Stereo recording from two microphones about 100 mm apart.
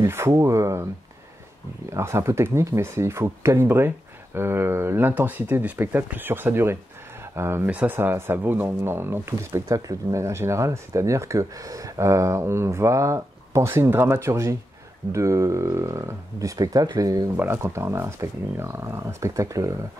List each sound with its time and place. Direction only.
0.0 s speech: 30° right (ahead or behind)
1.9 s speech: 25° right (ahead or behind)
17.4 s speech: 25° right (ahead or behind)